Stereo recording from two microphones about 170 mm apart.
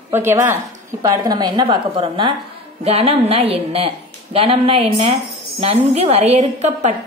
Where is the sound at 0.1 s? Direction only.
15° right (ahead or behind).